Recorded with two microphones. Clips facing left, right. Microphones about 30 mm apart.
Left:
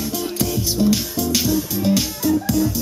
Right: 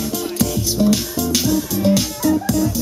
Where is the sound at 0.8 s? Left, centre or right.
Right.